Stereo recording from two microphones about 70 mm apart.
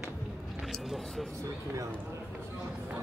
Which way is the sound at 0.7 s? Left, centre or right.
Centre.